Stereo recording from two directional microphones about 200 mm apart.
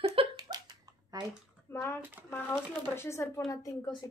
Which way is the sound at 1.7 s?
10° left (ahead or behind).